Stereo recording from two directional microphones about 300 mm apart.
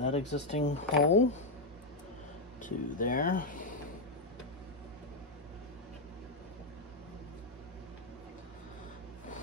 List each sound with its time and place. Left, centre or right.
0.0 s speech: left
2.6 s speech: left